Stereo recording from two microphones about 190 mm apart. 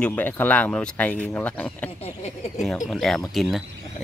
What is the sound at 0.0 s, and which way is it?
Speech, 10° left (ahead or behind).